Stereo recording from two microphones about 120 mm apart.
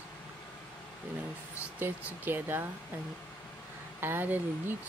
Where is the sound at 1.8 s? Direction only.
15° right (ahead or behind).